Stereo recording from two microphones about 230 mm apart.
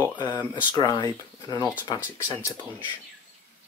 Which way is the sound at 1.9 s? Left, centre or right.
Centre.